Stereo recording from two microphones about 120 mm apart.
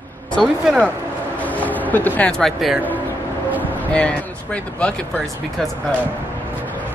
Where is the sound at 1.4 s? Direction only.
15° left (ahead or behind).